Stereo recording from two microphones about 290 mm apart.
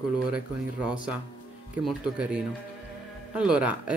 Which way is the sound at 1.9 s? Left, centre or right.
Centre.